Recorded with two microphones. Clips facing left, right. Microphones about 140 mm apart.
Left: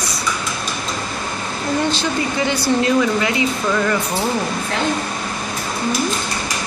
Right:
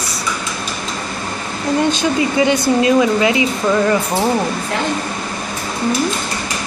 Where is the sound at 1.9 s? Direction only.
15° right (ahead or behind).